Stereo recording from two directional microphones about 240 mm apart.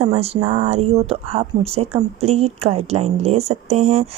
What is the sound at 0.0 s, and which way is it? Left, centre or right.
Speech, right.